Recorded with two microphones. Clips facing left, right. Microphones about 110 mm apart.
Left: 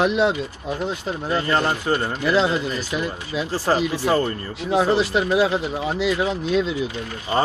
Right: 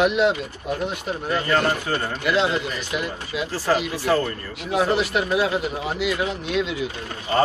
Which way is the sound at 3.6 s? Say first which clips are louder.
Left 1 dB; 30° left (ahead or behind).